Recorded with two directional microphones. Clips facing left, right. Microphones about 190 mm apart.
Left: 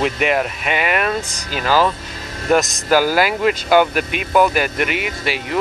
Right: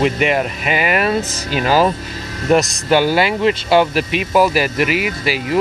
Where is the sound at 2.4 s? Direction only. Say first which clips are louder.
Right 2 dB; centre (ahead or behind).